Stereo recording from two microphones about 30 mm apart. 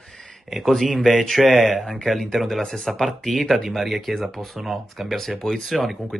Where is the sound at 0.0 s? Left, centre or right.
Centre.